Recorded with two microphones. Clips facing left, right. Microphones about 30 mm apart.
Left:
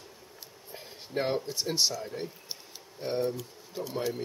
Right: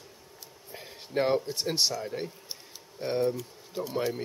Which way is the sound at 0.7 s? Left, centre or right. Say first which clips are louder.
Right 1 dB; centre.